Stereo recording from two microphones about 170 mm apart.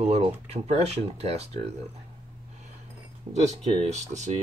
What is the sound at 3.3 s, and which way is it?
Speech, 40° right (ahead or behind).